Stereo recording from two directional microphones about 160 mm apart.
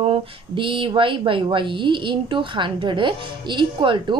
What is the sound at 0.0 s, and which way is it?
Speech, 35° right (ahead or behind).